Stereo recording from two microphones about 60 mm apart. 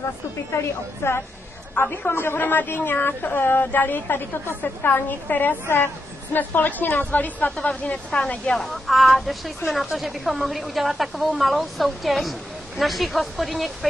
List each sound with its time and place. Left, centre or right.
0.6 s a woman's voice: left
8.5 s speech: centre